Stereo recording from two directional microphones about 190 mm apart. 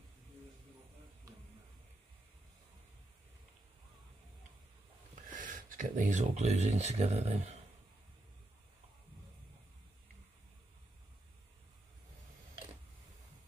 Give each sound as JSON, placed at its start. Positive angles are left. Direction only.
{"t": 5.3, "sound": "speech", "side_deg": -45}